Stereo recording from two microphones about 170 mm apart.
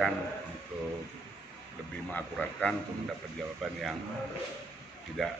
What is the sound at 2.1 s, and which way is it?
Speech, 10° left (ahead or behind).